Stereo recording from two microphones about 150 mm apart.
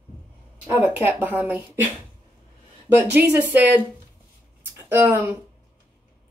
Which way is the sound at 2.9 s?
10° right (ahead or behind).